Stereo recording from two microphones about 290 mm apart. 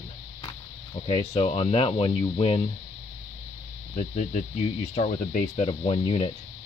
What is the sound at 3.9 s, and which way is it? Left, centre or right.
Speech, left.